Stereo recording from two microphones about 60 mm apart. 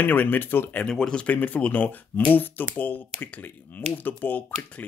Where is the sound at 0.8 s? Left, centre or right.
Centre.